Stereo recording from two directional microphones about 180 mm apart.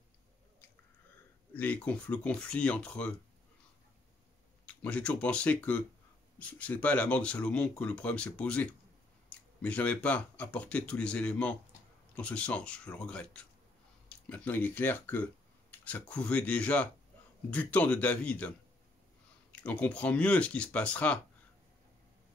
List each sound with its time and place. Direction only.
1.5 s speech: 10° left (ahead or behind)
4.6 s speech: 5° left (ahead or behind)
19.5 s speech: 5° left (ahead or behind)